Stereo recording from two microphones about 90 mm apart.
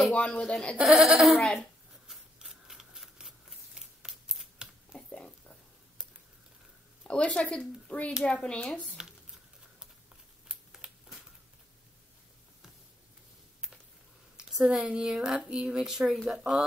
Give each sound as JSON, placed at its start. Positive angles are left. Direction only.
{"t": 0.1, "sound": "speech", "side_deg": 15}
{"t": 0.8, "sound": "speech", "side_deg": -5}
{"t": 2.0, "sound": "scissors", "side_deg": -5}
{"t": 4.9, "sound": "a sound", "side_deg": 10}
{"t": 7.0, "sound": "speech", "side_deg": 15}
{"t": 10.5, "sound": "a sound", "side_deg": -5}
{"t": 14.3, "sound": "speech", "side_deg": -10}